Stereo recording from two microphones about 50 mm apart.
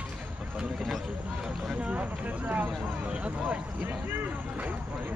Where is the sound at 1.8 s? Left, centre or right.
Right.